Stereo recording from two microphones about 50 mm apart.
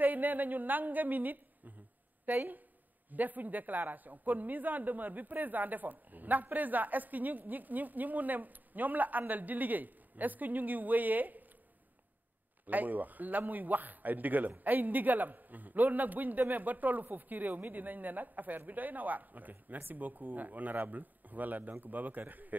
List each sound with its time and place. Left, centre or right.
0.0 s a man's voice: right
12.6 s a man's voice: right